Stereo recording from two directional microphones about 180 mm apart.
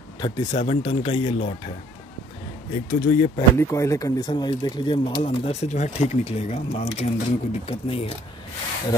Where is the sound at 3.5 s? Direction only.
15° left (ahead or behind); by 8.0 s 35° left (ahead or behind).